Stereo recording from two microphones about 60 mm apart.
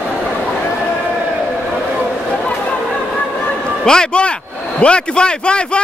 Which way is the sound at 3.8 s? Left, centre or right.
Centre.